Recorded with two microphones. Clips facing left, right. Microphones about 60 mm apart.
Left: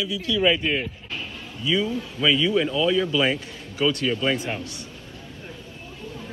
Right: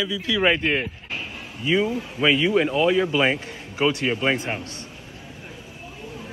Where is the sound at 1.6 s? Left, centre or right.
Right.